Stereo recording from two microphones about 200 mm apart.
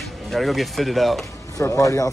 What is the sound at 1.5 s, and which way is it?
Speech, 15° left (ahead or behind).